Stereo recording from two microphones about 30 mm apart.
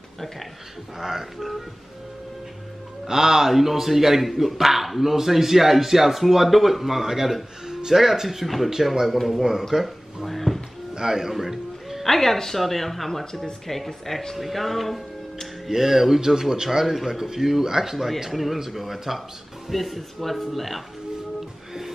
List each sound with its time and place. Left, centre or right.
0.9 s a man's voice: centre
3.1 s a man's voice: centre
9.1 s speech: centre
9.4 s speech: centre
10.2 s a sound: centre
11.0 s speech: centre
11.3 s music: centre
12.0 s a woman's voice: centre
15.7 s a man's voice: centre